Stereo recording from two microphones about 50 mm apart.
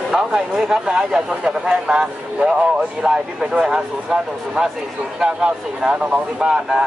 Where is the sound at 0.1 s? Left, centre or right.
Centre.